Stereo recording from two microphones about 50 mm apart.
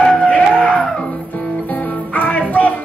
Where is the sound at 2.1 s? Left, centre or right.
Left.